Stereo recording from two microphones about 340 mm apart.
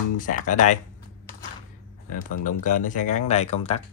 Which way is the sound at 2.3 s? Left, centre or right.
Left.